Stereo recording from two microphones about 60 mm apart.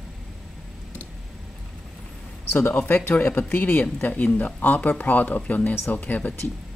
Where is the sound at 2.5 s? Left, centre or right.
Left.